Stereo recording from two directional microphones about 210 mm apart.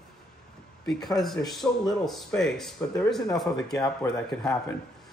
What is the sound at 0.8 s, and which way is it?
Speech, centre (ahead or behind).